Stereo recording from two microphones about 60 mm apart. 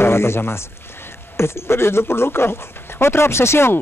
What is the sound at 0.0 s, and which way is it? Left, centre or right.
Speech, left.